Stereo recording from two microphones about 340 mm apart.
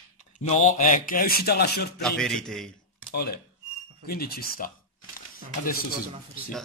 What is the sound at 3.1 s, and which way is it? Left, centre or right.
A man's voice, left.